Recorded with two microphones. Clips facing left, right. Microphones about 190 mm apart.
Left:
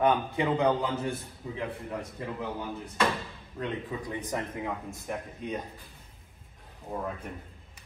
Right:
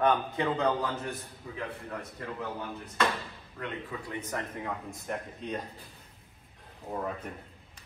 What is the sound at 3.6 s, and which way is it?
Speech, 15° left (ahead or behind).